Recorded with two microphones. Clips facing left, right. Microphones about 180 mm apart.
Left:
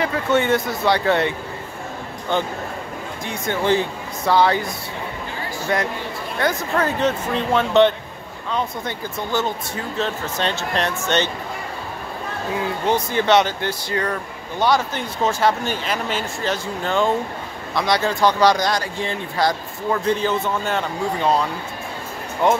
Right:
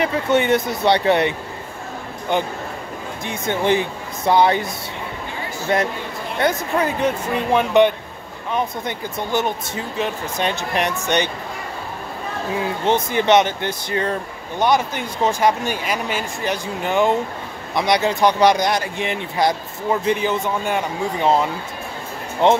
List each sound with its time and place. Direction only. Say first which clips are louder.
0.0 s speech: right 1 dB; 20° right (ahead or behind)
2.3 s speech: right 1 dB; 15° right (ahead or behind)
5.7 s speech: right 3 dB; 25° right (ahead or behind)
12.8 s speech: right 2 dB; 20° right (ahead or behind)